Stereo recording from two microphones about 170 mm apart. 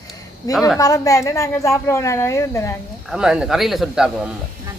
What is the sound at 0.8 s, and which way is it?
A woman's voice, 20° left (ahead or behind).